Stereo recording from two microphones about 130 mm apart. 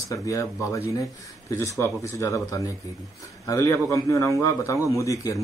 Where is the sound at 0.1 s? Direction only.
25° left (ahead or behind).